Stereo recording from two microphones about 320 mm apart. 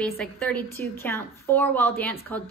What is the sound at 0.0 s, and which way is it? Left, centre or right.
A woman's voice, centre.